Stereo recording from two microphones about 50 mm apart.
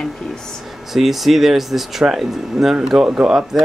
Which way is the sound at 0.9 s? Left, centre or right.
Centre.